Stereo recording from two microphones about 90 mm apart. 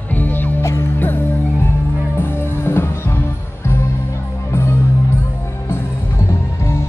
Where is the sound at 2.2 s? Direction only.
25° left (ahead or behind).